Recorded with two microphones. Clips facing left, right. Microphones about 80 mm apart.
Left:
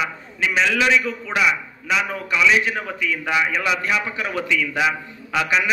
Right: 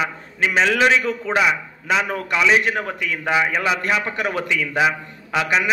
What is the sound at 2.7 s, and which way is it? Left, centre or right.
Speech, right.